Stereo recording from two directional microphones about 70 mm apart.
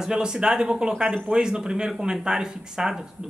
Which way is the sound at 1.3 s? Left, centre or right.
Centre.